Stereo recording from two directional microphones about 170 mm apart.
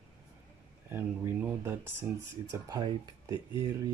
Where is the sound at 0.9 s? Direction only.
10° right (ahead or behind).